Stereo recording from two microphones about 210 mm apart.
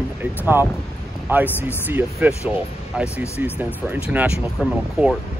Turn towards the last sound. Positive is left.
turn(degrees=-5)  # may be behind; listen again after turning